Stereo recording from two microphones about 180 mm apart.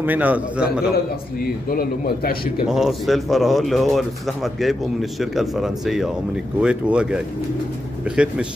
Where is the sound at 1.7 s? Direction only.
55° left (ahead or behind).